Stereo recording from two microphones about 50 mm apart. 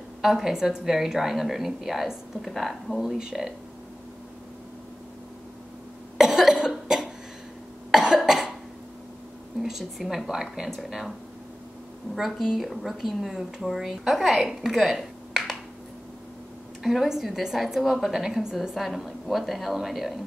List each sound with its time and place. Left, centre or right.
0.2 s a woman's voice: centre
6.1 s cough: centre
9.6 s a woman's voice: centre
12.2 s a woman's voice: centre
16.8 s a woman's voice: centre